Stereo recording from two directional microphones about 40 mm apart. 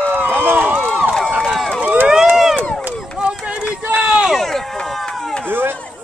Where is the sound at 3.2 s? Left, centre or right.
Right.